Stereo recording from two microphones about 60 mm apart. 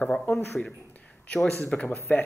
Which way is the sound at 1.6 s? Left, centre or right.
Left.